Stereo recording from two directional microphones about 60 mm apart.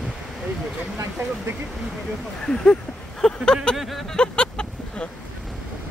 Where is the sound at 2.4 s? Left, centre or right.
Centre.